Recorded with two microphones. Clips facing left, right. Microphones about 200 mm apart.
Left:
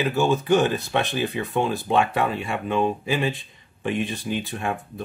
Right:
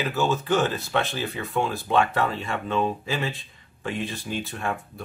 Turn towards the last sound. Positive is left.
turn(degrees=20)  # may be behind; listen again after turning